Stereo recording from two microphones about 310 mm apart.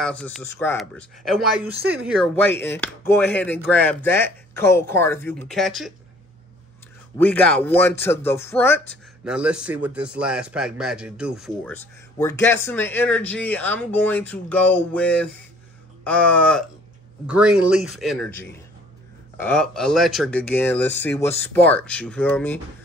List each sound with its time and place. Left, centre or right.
0.0 s speech: centre
7.2 s speech: centre
19.3 s speech: centre